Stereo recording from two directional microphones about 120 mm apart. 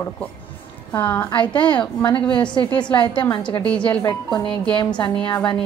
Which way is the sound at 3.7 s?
10° left (ahead or behind).